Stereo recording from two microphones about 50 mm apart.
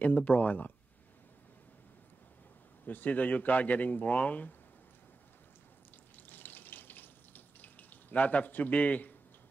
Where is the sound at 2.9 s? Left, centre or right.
Left.